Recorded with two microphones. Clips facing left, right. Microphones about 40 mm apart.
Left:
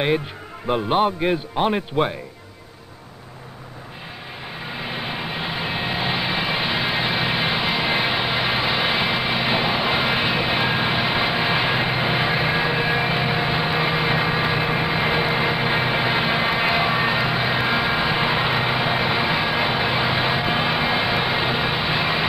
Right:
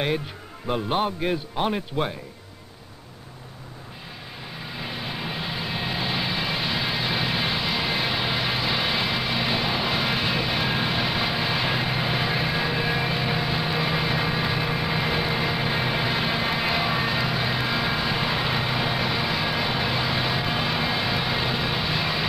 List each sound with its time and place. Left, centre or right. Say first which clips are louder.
0.7 s a man's voice: left 5 dB; centre
4.6 s vehicle: left 4 dB; left